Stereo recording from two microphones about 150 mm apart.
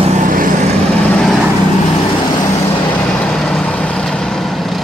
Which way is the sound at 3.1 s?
5° left (ahead or behind).